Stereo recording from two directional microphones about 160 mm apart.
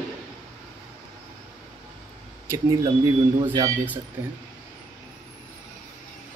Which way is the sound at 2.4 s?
20° right (ahead or behind).